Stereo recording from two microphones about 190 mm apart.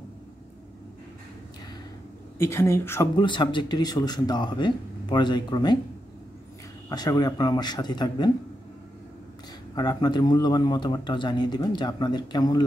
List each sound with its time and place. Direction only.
2.3 s a woman's voice: 15° left (ahead or behind)
3.2 s a man's voice: 25° left (ahead or behind)
6.9 s a man's voice: 20° left (ahead or behind)
9.8 s a man's voice: 20° left (ahead or behind)